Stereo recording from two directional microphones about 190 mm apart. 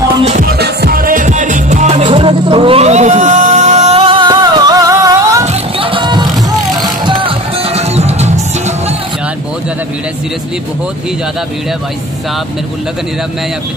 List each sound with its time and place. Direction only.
0.2 s music: 35° right (ahead or behind)
0.5 s music: 60° right (ahead or behind); by 5.5 s 15° right (ahead or behind)
5.5 s music: 30° right (ahead or behind)